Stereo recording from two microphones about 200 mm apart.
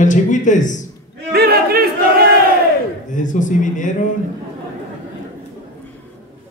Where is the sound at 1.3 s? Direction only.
50° right (ahead or behind).